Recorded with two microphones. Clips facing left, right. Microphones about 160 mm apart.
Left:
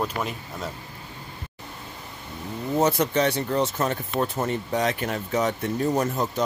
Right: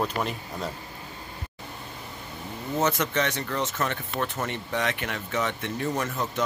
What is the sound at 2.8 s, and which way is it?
Speech, 35° left (ahead or behind).